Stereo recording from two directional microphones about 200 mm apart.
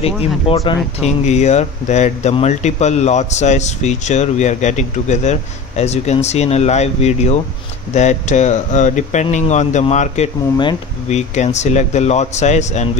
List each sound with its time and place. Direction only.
1.0 s speech: 35° left (ahead or behind)